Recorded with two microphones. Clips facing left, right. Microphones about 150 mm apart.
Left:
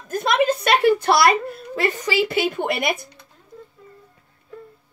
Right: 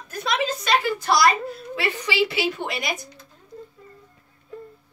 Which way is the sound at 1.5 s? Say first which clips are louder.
Left 4 dB; 45° left (ahead or behind).